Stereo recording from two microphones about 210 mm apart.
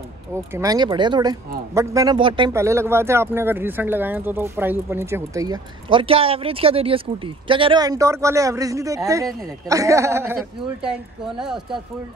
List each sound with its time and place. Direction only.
0.3 s speech: 15° right (ahead or behind)
2.5 s speech: 15° right (ahead or behind)